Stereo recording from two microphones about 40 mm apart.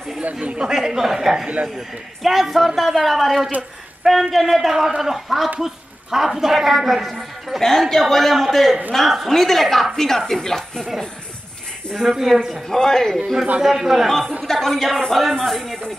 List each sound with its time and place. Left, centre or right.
0.2 s speech: right
0.6 s a woman's voice: centre
12.0 s speech: centre
12.6 s a woman's voice: centre
13.6 s speech: centre
14.0 s a woman's voice: centre